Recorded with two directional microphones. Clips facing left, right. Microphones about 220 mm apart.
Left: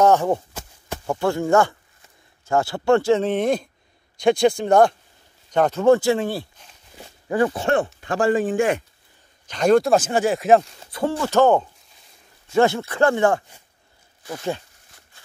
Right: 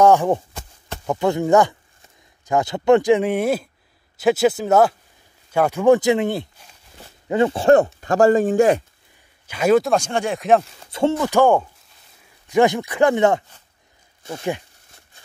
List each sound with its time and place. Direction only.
0.0 s a man's voice: 15° right (ahead or behind); by 8.8 s 40° right (ahead or behind)
9.5 s speech: 5° right (ahead or behind)
10.9 s speech: 25° right (ahead or behind)
11.2 s speech: 10° right (ahead or behind)